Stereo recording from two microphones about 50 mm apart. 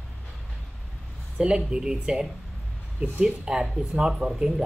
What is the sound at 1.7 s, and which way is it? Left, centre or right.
Speech, centre.